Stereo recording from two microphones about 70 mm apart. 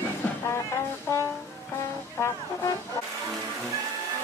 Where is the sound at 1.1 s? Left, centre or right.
Left.